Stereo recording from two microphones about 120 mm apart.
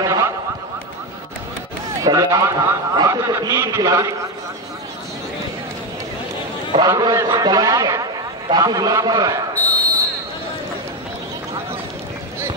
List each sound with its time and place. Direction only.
0.0 s a sound: 25° right (ahead or behind)
1.9 s a man's voice: 30° right (ahead or behind)
6.9 s a man's voice: 25° right (ahead or behind)
9.6 s basketball bounce: 15° left (ahead or behind)